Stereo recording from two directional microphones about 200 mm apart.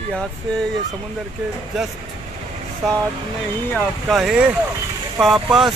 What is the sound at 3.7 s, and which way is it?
Speech, centre (ahead or behind).